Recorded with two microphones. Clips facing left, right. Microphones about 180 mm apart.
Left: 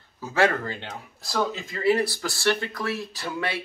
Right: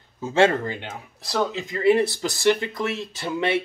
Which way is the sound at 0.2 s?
25° right (ahead or behind).